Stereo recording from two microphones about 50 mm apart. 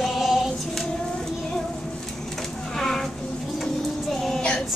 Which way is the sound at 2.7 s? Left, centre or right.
Centre.